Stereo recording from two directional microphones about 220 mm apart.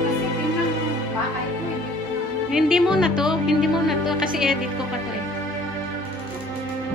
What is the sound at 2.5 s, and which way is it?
Speech, centre (ahead or behind).